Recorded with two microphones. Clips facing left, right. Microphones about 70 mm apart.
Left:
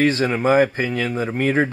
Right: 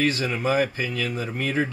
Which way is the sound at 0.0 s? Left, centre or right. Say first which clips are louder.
Left 6 dB; left.